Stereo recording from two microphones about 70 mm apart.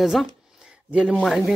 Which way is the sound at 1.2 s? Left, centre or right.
Centre.